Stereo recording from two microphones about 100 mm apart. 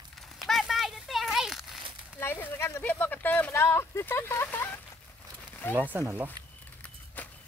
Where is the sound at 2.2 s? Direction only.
25° left (ahead or behind).